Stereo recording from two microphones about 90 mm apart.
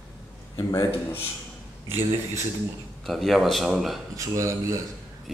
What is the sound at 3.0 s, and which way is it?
Speech, centre (ahead or behind).